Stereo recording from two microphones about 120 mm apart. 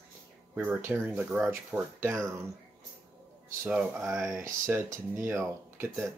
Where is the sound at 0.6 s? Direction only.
20° right (ahead or behind).